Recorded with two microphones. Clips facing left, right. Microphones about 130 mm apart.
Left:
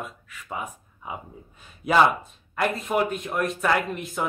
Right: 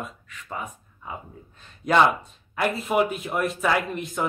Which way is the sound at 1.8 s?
5° left (ahead or behind).